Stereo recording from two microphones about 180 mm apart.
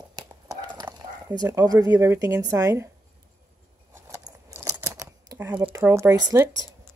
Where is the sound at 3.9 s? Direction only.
15° right (ahead or behind).